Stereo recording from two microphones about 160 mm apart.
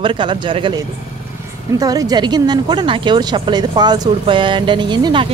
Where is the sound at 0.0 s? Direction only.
30° right (ahead or behind).